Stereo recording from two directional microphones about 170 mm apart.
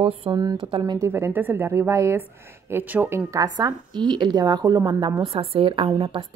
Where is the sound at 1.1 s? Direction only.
10° right (ahead or behind).